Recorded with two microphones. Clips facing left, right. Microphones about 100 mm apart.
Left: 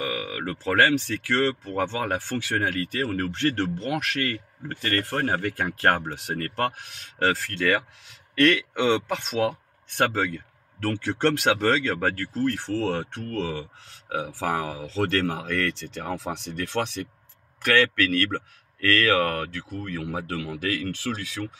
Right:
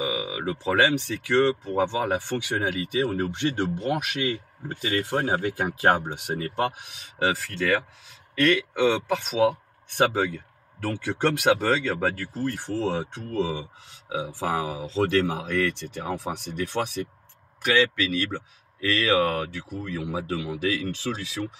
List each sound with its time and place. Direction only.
0.0 s speech: 5° right (ahead or behind)